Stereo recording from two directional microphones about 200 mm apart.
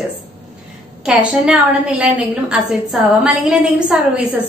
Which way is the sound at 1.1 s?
5° right (ahead or behind).